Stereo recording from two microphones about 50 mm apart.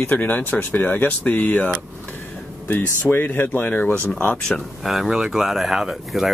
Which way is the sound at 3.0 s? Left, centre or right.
Left.